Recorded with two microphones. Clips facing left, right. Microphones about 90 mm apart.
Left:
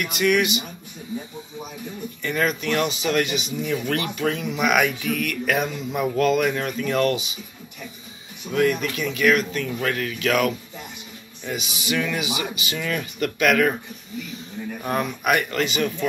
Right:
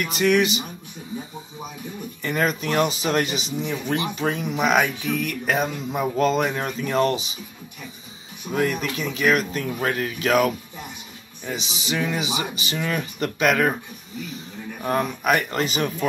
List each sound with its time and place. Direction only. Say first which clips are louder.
0.0 s speech: right 1 dB; 35° right (ahead or behind)
2.2 s speech: even; 35° right (ahead or behind)
8.9 s speech: left 1 dB; 35° right (ahead or behind)
14.8 s speech: right 2 dB; 30° right (ahead or behind)